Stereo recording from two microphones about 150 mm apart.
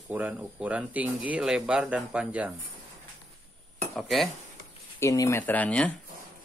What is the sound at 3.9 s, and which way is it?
Cutlery, centre (ahead or behind).